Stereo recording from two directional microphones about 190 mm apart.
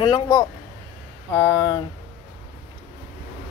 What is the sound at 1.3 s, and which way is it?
Speech, 10° left (ahead or behind).